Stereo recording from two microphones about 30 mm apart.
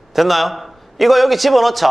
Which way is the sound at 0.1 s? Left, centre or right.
Centre.